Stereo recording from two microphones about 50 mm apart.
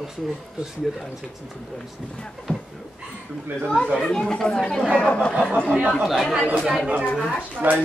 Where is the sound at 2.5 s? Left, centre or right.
Left.